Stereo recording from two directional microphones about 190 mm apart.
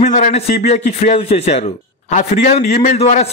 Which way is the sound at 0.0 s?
40° left (ahead or behind).